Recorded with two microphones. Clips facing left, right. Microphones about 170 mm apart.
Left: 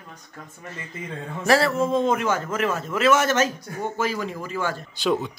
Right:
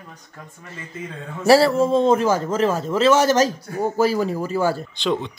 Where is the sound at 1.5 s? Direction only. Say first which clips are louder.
Right 5 dB; 30° right (ahead or behind).